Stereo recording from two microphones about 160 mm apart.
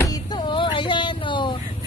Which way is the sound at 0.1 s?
30° left (ahead or behind).